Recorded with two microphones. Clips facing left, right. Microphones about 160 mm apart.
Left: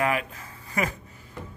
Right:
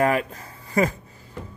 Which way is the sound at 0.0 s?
40° right (ahead or behind).